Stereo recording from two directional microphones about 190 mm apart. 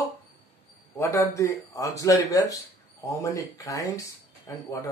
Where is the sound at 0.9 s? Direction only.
15° left (ahead or behind).